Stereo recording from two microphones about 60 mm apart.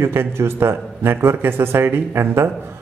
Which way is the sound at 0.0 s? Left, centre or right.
Right.